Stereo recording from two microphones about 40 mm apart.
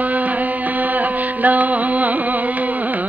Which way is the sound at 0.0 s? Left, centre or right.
Right.